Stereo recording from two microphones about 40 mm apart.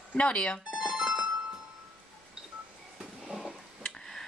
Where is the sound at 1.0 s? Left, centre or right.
Right.